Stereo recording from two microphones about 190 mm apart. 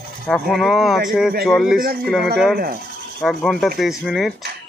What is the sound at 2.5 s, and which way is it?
Speech, 50° right (ahead or behind).